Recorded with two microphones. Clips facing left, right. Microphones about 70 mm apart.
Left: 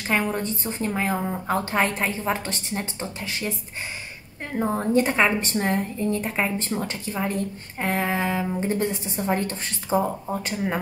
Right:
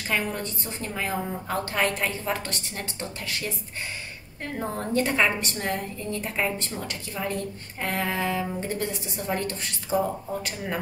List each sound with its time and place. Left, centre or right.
0.1 s speech: left
4.6 s speech: left